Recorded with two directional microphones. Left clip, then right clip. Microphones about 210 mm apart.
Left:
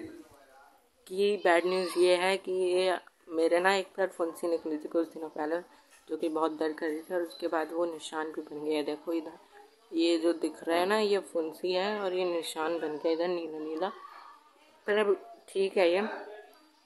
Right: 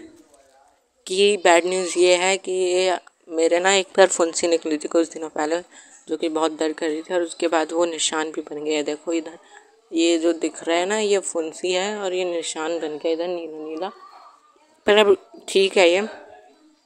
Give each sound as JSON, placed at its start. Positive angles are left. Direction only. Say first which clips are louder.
{"t": 1.0, "sound": "speech", "louder": "right 10 dB", "side_deg": -35}
{"t": 14.9, "sound": "speech", "louder": "right 12 dB", "side_deg": -35}